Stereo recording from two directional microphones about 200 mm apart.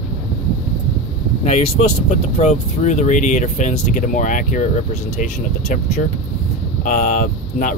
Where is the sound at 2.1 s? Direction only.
35° left (ahead or behind).